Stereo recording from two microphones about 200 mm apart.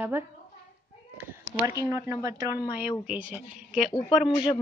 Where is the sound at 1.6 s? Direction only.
15° right (ahead or behind).